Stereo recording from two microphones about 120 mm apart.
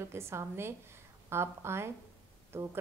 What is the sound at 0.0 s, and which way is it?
A woman's voice, 20° right (ahead or behind).